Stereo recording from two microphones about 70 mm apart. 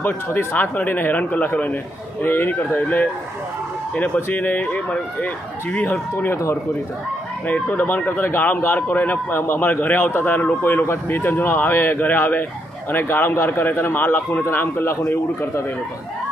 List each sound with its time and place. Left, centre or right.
0.0 s speech: left
6.1 s speech: left
7.4 s a man's voice: left